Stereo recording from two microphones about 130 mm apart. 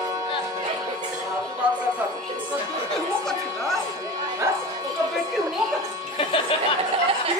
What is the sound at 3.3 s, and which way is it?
Music, centre (ahead or behind).